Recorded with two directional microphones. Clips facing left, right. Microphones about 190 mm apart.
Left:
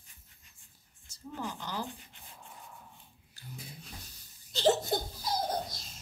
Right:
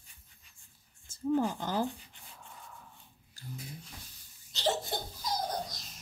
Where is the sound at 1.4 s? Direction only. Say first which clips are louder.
Right 5 dB; 50° right (ahead or behind).